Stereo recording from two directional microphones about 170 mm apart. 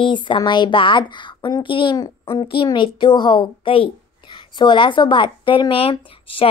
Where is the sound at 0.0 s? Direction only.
30° left (ahead or behind).